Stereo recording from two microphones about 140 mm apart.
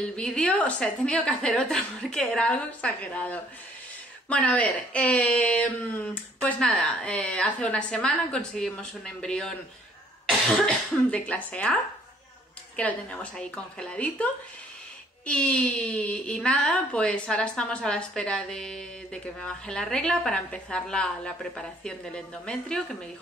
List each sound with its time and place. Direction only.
0.1 s a woman's voice: 5° left (ahead or behind)